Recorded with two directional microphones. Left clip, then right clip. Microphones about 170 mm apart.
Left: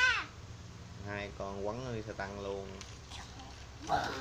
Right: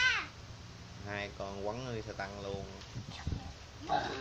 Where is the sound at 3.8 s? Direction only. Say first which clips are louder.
Even; 20° left (ahead or behind).